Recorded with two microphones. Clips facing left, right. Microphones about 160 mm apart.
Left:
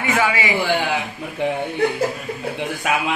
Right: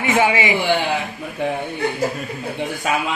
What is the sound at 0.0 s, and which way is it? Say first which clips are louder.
Speech: right 3 dB; 20° right (ahead or behind).